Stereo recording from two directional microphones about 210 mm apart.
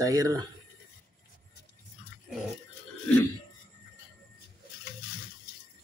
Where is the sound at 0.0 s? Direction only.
15° right (ahead or behind).